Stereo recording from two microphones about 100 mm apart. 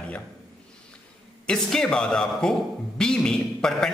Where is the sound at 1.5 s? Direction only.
5° left (ahead or behind).